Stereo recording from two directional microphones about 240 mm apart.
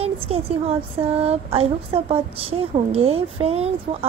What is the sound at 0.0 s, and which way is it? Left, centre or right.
Speech, right.